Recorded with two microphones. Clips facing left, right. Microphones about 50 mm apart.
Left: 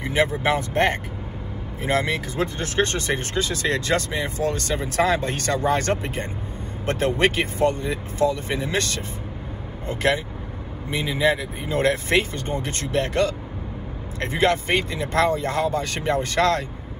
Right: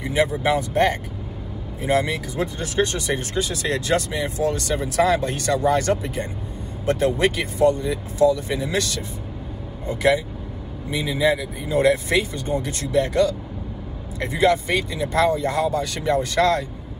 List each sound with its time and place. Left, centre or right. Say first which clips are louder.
0.0 s speech: right 1 dB; left